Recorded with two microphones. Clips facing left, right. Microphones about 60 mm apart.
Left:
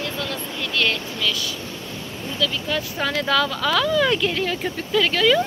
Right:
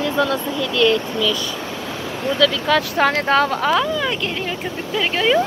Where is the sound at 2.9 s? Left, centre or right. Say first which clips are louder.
Right 2 dB; right.